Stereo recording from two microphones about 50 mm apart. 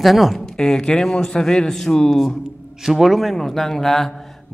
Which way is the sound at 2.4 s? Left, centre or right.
Centre.